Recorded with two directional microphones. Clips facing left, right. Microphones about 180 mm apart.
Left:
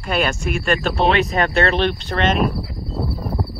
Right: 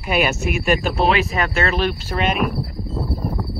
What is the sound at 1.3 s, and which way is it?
Speech, 35° left (ahead or behind).